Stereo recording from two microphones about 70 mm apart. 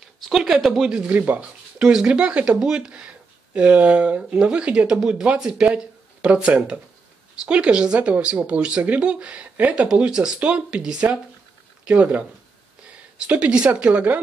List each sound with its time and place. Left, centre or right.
0.2 s speech: centre
1.0 s speech: right
1.8 s speech: centre